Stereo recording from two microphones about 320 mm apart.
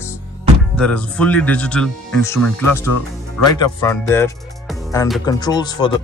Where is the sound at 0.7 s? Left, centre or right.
Centre.